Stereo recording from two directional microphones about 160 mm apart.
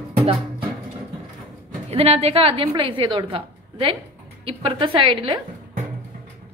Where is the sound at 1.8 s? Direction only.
40° right (ahead or behind).